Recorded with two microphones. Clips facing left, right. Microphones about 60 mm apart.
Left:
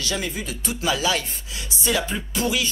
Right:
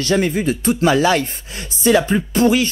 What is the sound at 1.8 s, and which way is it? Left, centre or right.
Music, right.